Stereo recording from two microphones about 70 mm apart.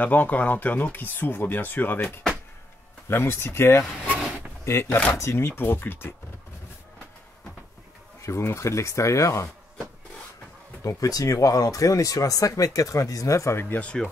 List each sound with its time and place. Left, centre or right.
0.0 s speech: left
4.8 s speech: left
5.1 s speech: left
8.2 s speech: left
10.8 s speech: left
13.7 s speech: centre